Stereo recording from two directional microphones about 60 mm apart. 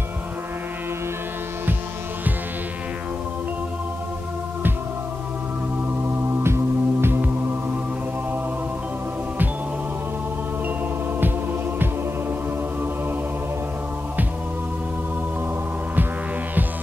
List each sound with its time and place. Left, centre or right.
6.4 s music: right